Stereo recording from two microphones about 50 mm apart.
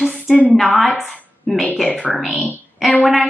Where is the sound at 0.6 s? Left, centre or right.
Centre.